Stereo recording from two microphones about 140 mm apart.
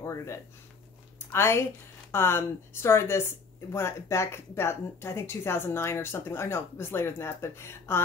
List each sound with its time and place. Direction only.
0.0 s speech: 20° left (ahead or behind)